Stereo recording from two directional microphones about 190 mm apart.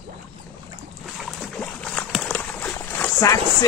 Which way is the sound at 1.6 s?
5° left (ahead or behind).